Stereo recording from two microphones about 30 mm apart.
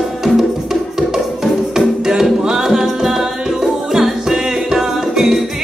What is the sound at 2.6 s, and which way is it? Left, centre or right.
Music, centre.